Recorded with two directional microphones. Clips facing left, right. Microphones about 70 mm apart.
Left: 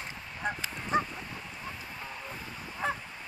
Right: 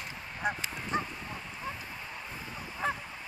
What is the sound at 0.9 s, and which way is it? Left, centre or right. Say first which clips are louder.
Bow-wow: left 4 dB; left.